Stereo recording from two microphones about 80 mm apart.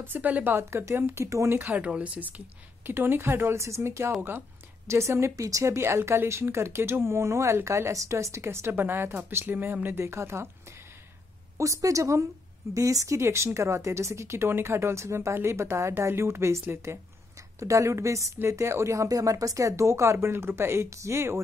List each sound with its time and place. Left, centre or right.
0.0 s a woman's voice: right
1.6 s speech: centre
2.9 s speech: right
11.5 s speech: right